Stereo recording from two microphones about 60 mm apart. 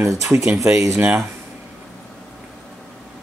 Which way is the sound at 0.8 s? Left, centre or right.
Right.